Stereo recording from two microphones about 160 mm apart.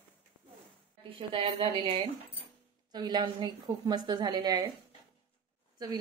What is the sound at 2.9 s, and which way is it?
A woman's voice, 25° right (ahead or behind).